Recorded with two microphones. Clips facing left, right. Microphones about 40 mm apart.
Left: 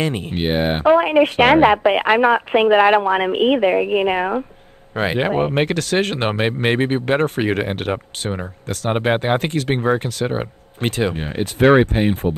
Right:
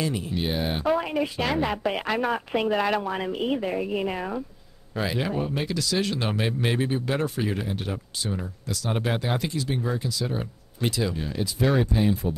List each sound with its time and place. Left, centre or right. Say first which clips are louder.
0.0 s speech: left 6 dB; left
8.4 s speech: left 6 dB; left